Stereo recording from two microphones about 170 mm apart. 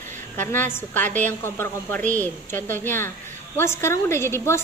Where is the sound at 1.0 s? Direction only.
45° right (ahead or behind).